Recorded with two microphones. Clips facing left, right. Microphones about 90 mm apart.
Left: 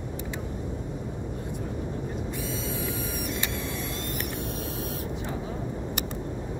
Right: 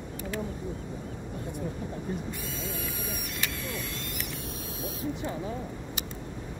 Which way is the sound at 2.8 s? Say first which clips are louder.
Left 5 dB; 25° left (ahead or behind).